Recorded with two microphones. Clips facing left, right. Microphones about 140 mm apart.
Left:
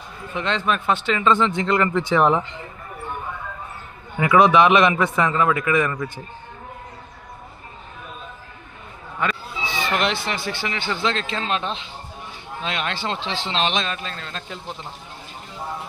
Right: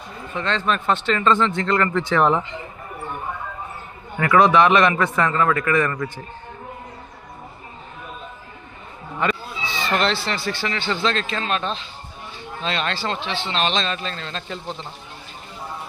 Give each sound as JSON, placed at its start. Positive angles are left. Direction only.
{"t": 0.3, "sound": "speech", "side_deg": 15}
{"t": 4.2, "sound": "speech", "side_deg": 15}
{"t": 9.7, "sound": "a man's voice", "side_deg": 15}
{"t": 13.8, "sound": "speech", "side_deg": 5}